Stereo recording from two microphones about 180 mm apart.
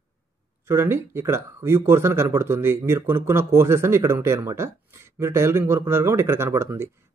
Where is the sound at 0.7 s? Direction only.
15° right (ahead or behind).